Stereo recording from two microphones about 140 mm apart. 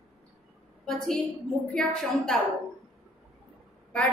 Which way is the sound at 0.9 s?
Centre (ahead or behind).